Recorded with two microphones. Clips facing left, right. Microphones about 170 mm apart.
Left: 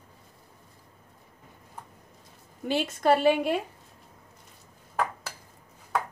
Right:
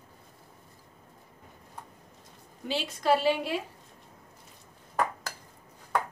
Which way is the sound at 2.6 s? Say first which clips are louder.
Left 4 dB; 50° left (ahead or behind).